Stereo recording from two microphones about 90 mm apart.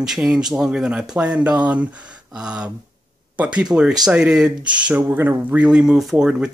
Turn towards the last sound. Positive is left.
turn(degrees=-5)  # may be behind; listen again after turning